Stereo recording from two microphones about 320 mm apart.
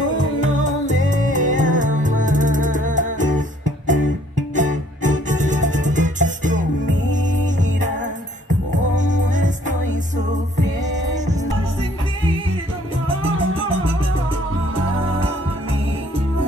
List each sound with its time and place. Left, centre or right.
0.7 s music: right
8.9 s music: right